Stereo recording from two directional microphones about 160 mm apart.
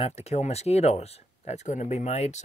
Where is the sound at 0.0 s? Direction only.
40° left (ahead or behind).